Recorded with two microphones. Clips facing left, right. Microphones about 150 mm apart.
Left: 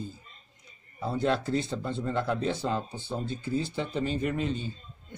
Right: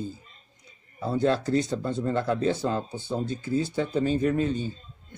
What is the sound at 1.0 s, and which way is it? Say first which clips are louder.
Speech: right 3 dB; 40° right (ahead or behind).